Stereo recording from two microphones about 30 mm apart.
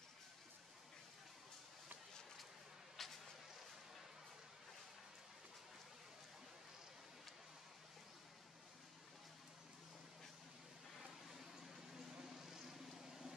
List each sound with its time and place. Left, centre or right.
3.0 s vehicle: centre
11.2 s a sound: centre
12.4 s vehicle: centre